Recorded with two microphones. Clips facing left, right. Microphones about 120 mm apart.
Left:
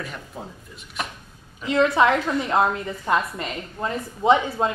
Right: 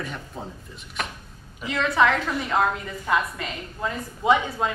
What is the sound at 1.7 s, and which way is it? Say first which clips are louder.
A woman's voice: left 3 dB; 20° left (ahead or behind).